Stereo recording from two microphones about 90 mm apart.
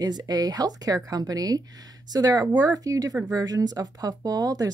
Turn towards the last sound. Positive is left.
turn(degrees=-45)  # may be behind; listen again after turning